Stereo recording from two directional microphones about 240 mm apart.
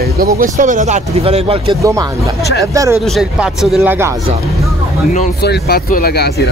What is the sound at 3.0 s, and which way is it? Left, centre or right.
Speech, centre.